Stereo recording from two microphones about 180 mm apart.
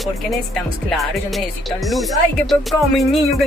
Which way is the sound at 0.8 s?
Centre (ahead or behind).